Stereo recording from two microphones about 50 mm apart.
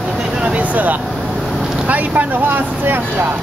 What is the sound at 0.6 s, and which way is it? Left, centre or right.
Speech, right.